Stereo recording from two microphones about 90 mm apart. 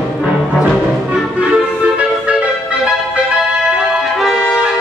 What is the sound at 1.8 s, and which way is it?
Music, 15° right (ahead or behind).